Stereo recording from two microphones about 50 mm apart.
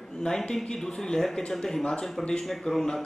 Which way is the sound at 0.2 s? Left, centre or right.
Centre.